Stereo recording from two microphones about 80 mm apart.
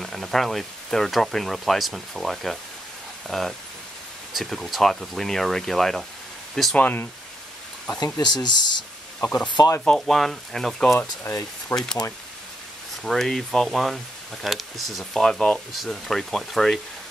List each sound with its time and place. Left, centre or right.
0.0 s speech: centre
6.8 s speech: left
8.0 s speech: left
9.8 s speech: centre
10.9 s speech: left
11.7 s speech: centre
13.0 s speech: centre